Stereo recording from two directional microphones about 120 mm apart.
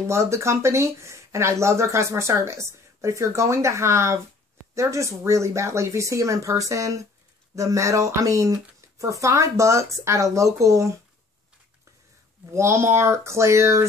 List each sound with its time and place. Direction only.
0.0 s speech: 25° right (ahead or behind)
12.5 s speech: 25° right (ahead or behind)